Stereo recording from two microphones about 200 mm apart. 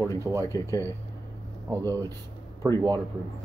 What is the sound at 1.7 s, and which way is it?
Speech, 15° right (ahead or behind).